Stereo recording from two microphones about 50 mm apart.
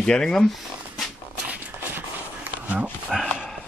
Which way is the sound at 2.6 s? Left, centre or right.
Right.